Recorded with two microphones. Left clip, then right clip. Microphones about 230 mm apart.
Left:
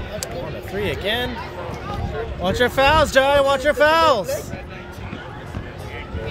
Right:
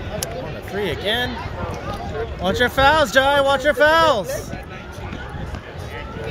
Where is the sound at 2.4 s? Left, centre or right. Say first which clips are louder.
Right 1 dB; centre.